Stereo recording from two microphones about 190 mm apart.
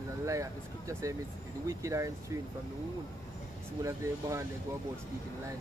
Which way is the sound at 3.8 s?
15° right (ahead or behind).